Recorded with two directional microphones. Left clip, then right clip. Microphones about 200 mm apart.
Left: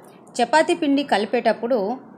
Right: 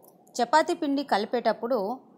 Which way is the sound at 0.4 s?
20° right (ahead or behind).